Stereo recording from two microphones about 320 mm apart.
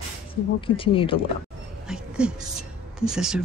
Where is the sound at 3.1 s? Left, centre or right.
Centre.